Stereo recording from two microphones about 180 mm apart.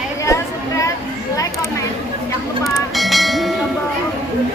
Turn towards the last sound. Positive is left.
turn(degrees=0)  # may be behind; listen again after turning